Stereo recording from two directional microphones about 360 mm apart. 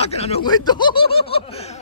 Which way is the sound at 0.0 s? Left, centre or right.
Centre.